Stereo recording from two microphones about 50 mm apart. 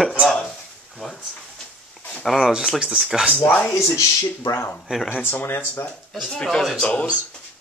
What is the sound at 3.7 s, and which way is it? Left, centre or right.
Speech, left.